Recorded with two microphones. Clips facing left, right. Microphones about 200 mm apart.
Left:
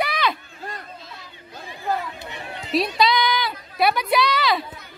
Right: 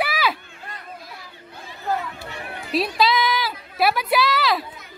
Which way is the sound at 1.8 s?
15° left (ahead or behind).